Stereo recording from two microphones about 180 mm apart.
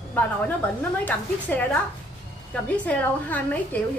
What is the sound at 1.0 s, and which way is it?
A woman's voice, 10° left (ahead or behind).